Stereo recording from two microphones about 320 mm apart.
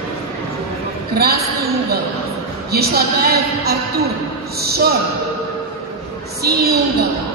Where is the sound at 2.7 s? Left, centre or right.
Right.